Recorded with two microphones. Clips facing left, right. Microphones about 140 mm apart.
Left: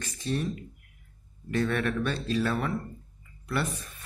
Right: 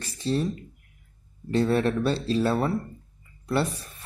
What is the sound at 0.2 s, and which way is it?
Speech, 30° right (ahead or behind).